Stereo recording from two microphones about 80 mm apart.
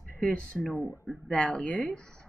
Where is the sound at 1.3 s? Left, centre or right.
Centre.